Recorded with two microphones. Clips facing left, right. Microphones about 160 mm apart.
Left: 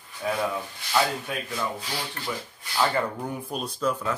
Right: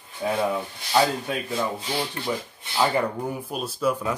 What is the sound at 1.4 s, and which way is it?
Speech, 25° right (ahead or behind).